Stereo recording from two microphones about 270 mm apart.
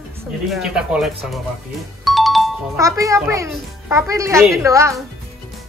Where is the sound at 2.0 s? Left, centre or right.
Centre.